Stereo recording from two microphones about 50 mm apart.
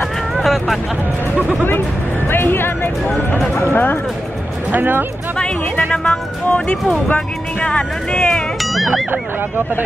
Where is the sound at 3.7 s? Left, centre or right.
Left.